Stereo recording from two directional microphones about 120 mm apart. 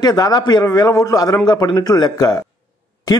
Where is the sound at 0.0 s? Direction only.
35° left (ahead or behind).